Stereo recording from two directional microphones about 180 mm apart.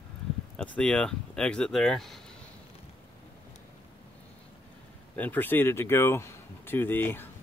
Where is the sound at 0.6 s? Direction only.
5° left (ahead or behind).